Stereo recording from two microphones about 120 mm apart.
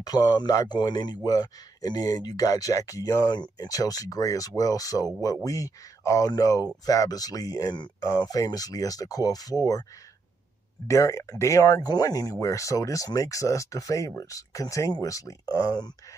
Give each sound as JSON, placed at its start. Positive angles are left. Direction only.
{"t": 0.0, "sound": "a man's voice", "side_deg": 30}
{"t": 10.9, "sound": "a man's voice", "side_deg": 25}